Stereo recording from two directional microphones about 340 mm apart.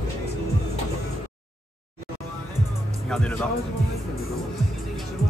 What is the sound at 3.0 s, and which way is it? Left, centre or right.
Speech, centre.